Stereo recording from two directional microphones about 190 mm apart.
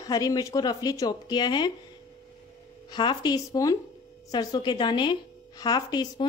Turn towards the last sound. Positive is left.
turn(degrees=20)  # may be behind; listen again after turning